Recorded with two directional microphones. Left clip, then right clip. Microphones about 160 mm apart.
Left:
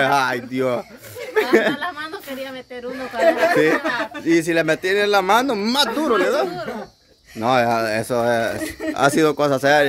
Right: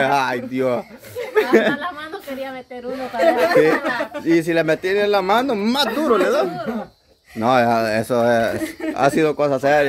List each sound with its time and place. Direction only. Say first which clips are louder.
0.0 s a man's voice: even; 10° left (ahead or behind)
1.3 s a sound: right 1 dB; centre (ahead or behind)
3.2 s a man's voice: right 1 dB; 5° right (ahead or behind)
9.2 s speech: even; 20° left (ahead or behind)